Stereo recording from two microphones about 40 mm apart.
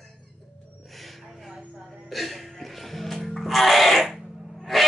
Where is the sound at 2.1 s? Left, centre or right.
Centre.